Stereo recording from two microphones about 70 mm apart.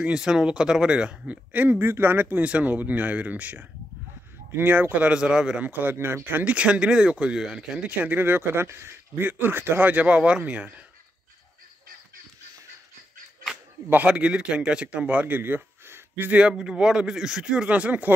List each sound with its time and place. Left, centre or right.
0.0 s speech: centre
5.7 s speech: right
6.4 s speech: centre
7.8 s speech: right
13.8 s speech: right
16.3 s speech: centre